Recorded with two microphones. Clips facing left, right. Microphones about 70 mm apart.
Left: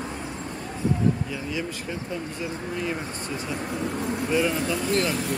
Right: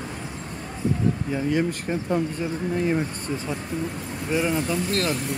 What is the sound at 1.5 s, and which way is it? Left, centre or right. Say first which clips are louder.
Speech: right 7 dB; right.